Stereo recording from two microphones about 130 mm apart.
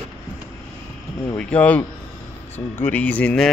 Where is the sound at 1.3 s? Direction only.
10° left (ahead or behind).